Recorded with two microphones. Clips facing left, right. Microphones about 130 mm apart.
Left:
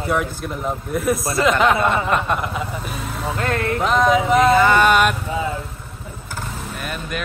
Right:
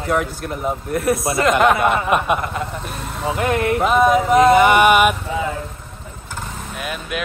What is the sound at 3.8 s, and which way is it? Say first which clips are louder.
Speech: right 1 dB; 5° right (ahead or behind).